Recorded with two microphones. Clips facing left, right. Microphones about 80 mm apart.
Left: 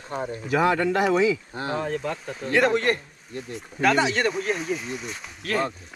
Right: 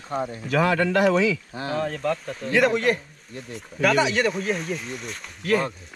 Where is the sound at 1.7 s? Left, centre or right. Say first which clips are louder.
Right 3 dB; centre.